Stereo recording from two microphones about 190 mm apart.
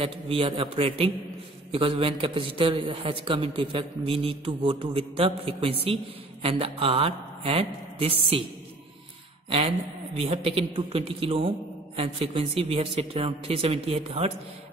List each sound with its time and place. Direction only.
0.0 s a man's voice: 30° right (ahead or behind)
9.5 s a man's voice: 30° right (ahead or behind)